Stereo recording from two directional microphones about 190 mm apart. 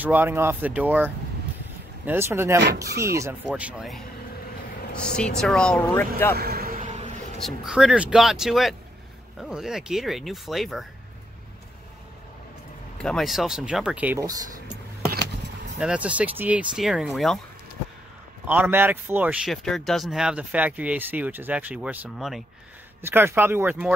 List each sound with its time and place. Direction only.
0.0 s speech: 10° right (ahead or behind); by 6.3 s 10° left (ahead or behind)
6.3 s a sound: 55° right (ahead or behind); by 7.1 s 40° right (ahead or behind)
7.4 s speech: centre (ahead or behind)
12.9 s speech: centre (ahead or behind)
15.8 s speech: 5° right (ahead or behind)
18.5 s speech: 10° right (ahead or behind)